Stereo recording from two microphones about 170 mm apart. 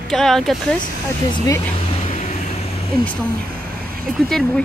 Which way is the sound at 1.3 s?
20° left (ahead or behind).